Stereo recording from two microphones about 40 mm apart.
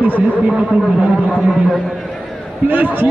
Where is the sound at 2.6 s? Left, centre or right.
Right.